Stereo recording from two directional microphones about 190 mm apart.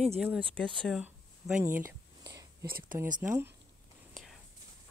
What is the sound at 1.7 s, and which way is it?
Whispering, 15° right (ahead or behind).